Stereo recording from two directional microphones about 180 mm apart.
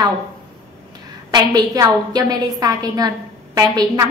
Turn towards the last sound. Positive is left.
turn(degrees=-20)  # may be behind; listen again after turning